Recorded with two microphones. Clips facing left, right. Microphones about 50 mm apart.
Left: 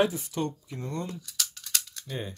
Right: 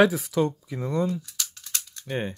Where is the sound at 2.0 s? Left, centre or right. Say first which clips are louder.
Right 10 dB; right.